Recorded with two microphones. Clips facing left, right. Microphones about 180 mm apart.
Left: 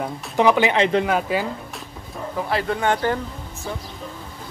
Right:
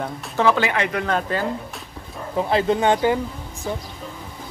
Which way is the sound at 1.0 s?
10° left (ahead or behind).